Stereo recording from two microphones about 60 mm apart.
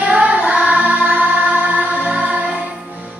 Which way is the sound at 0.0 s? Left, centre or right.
Right.